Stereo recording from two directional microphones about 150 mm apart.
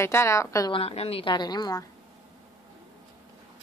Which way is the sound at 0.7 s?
40° left (ahead or behind).